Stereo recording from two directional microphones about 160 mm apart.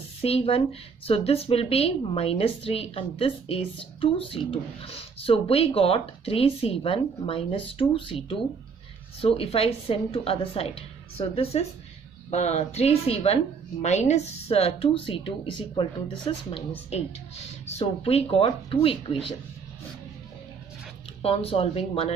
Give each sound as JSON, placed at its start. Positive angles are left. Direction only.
{"t": 0.2, "sound": "speech", "side_deg": 40}
{"t": 21.2, "sound": "speech", "side_deg": 35}